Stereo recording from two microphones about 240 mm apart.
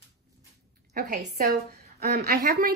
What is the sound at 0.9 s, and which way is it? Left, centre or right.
A woman's voice, right.